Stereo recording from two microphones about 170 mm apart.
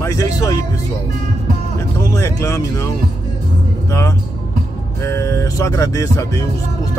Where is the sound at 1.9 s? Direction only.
15° left (ahead or behind).